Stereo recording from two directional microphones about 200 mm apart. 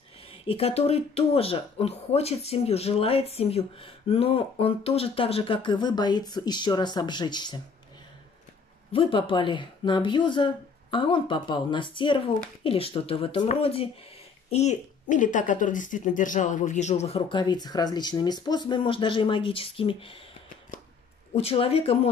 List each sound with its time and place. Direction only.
0.3 s speech: 30° left (ahead or behind)
8.9 s speech: 25° left (ahead or behind)
21.4 s speech: 30° left (ahead or behind)